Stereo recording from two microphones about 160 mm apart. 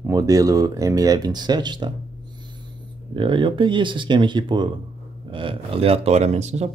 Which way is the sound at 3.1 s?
30° right (ahead or behind).